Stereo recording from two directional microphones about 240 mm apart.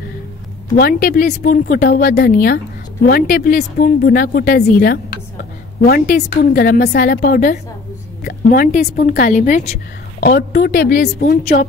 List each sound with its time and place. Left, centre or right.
0.7 s a woman's voice: left